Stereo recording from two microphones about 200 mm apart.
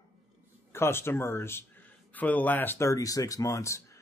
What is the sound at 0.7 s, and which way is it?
Speech, 10° left (ahead or behind).